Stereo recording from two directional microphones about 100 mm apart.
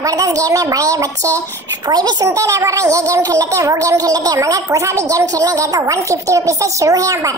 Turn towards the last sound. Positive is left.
turn(degrees=-35)  # may be behind; listen again after turning